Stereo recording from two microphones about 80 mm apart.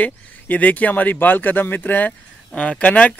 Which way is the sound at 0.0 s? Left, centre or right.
Centre.